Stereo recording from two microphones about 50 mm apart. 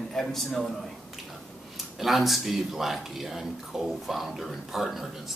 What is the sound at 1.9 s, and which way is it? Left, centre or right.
Speech, centre.